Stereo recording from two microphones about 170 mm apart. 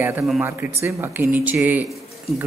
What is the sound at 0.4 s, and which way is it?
Speech, 15° right (ahead or behind).